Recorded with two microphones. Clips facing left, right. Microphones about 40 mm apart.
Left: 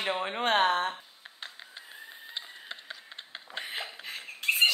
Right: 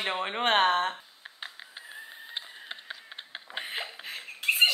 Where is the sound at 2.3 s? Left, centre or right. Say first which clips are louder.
Even; centre.